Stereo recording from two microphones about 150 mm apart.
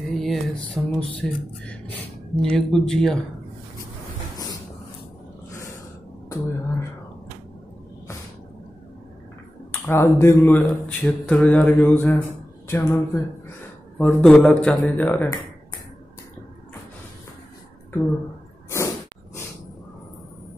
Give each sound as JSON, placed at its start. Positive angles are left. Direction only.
{"t": 0.1, "sound": "music", "side_deg": 0}
{"t": 2.4, "sound": "speech", "side_deg": 5}
{"t": 6.2, "sound": "a woman's voice", "side_deg": 20}
{"t": 9.8, "sound": "speech", "side_deg": 15}
{"t": 13.9, "sound": "speech", "side_deg": 5}